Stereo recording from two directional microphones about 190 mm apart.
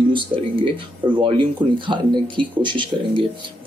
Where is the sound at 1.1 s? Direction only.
25° right (ahead or behind).